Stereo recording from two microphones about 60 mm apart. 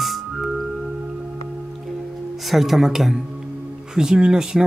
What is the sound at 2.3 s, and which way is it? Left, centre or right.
Speech, centre.